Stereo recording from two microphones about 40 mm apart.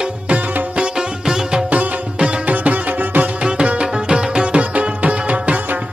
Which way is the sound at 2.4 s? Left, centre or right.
Right.